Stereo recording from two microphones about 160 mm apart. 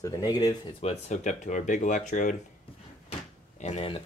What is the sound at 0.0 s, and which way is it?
Speech, 25° left (ahead or behind).